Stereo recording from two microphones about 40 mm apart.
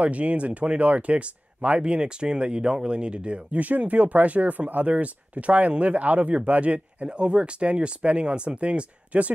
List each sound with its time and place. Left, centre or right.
0.0 s speech: right
1.8 s speech: right
3.5 s speech: right